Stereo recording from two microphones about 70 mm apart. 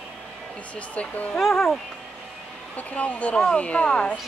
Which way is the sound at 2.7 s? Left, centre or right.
Centre.